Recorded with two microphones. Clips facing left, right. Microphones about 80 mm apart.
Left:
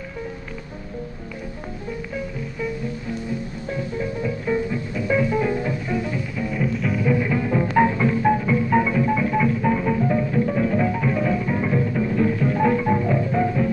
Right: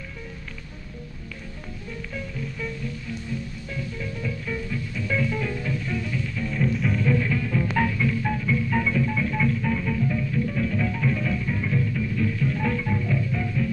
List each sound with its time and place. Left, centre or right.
2.1 s music: centre; by 13.7 s left